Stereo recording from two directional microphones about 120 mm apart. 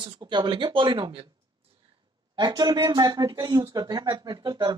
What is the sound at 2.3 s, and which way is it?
A man's voice, 35° right (ahead or behind).